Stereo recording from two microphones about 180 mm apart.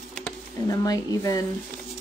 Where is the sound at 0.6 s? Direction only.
20° left (ahead or behind).